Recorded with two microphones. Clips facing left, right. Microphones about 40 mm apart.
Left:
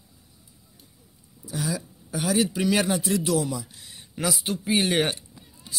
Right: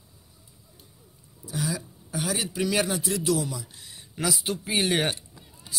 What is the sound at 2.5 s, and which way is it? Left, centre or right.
Speech, left.